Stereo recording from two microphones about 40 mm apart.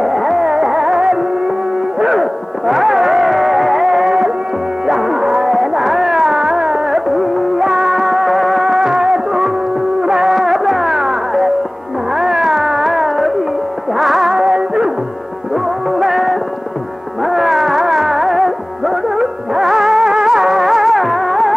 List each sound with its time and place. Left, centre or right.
0.0 s music: centre
14.4 s music: centre
15.5 s music: centre